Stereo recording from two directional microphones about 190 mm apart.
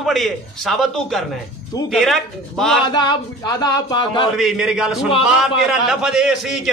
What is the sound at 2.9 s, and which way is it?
Speech, 20° left (ahead or behind).